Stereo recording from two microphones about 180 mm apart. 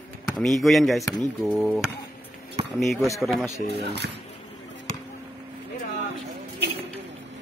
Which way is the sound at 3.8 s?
70° right (ahead or behind).